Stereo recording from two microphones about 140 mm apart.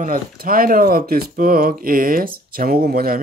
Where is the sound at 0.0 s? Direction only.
85° right.